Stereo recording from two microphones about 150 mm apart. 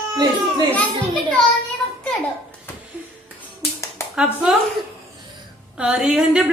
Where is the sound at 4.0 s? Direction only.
20° left (ahead or behind).